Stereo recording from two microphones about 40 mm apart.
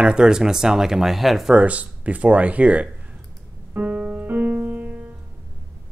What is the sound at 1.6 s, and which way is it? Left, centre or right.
Speech, right.